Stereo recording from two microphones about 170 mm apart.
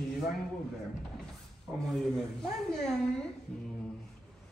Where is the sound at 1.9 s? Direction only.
Centre (ahead or behind).